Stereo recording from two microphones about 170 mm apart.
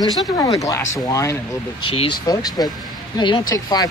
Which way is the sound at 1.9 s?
30° left (ahead or behind).